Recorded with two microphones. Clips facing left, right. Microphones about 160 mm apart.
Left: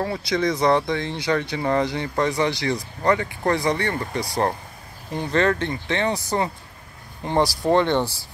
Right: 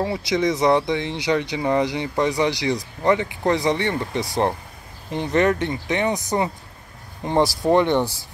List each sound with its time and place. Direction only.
0.0 s speech: 20° right (ahead or behind)